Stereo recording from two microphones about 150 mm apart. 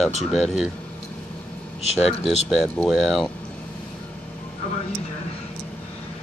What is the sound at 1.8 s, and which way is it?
Speech, 45° left (ahead or behind).